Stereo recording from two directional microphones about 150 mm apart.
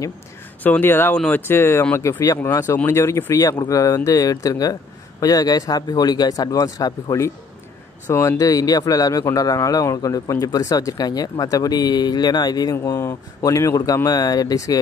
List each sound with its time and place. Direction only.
0.7 s speech: 15° left (ahead or behind)